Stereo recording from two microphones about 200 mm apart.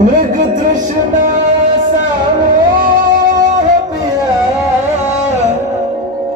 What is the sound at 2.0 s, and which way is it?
Music, 40° right (ahead or behind).